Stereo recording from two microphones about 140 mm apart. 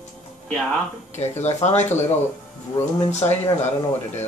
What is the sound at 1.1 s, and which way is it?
Speech, 50° left (ahead or behind).